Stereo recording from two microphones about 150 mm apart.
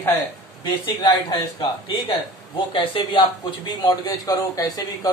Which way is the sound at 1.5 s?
35° left (ahead or behind).